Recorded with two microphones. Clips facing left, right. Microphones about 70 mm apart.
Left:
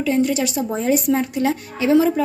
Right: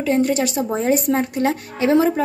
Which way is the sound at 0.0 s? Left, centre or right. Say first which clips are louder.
Right 1 dB; right.